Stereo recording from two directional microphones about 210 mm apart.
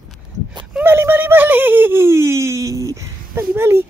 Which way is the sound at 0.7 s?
10° right (ahead or behind).